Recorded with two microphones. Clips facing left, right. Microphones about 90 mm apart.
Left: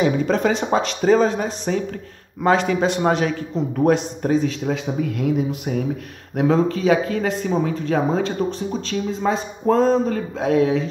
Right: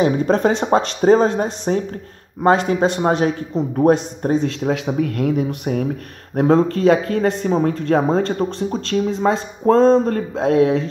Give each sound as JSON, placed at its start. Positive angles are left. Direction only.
{"t": 0.0, "sound": "a man's voice", "side_deg": -30}
{"t": 0.7, "sound": "speech", "side_deg": -40}
{"t": 3.0, "sound": "a man's voice", "side_deg": -25}
{"t": 4.6, "sound": "speech", "side_deg": -60}
{"t": 6.3, "sound": "speech", "side_deg": -45}
{"t": 9.8, "sound": "a man's voice", "side_deg": -30}
{"t": 10.0, "sound": "speech", "side_deg": -50}